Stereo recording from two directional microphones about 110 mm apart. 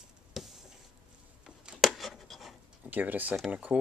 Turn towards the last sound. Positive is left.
turn(degrees=-15)  # may be behind; listen again after turning